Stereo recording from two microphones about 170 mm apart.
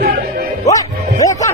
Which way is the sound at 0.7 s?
20° left (ahead or behind).